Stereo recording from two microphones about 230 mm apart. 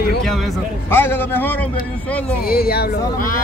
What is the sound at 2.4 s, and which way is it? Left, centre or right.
Speech, left.